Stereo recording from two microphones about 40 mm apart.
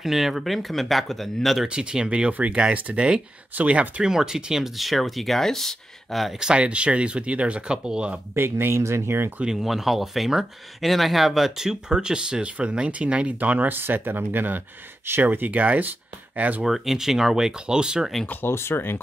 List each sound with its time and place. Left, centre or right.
0.0 s speech: centre
1.7 s speech: right
2.7 s speech: right
4.0 s speech: centre
6.4 s speech: right
8.4 s speech: right
9.5 s speech: centre; by 13.3 s right
13.4 s speech: right
13.7 s speech: right
16.6 s speech: centre
18.5 s speech: left